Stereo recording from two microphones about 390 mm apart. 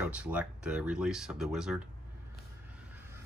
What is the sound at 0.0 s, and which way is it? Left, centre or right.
Speech, centre.